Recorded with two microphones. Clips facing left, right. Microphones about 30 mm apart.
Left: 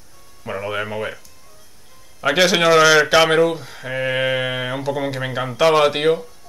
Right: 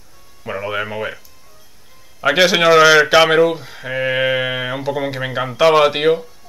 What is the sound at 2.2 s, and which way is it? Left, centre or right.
Speech, centre.